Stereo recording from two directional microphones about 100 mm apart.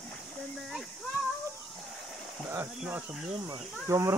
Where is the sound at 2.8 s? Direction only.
15° right (ahead or behind).